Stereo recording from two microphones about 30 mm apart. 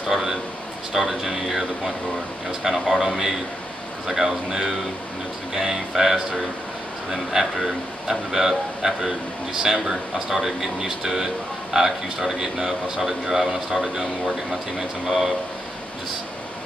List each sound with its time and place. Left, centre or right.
0.1 s a man's voice: centre
4.1 s a man's voice: centre